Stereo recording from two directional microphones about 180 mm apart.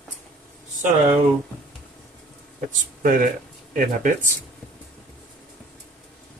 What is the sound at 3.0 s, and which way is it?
Speech, 50° right (ahead or behind).